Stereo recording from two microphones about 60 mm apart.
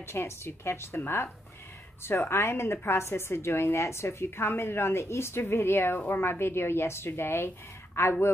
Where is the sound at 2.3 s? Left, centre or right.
Left.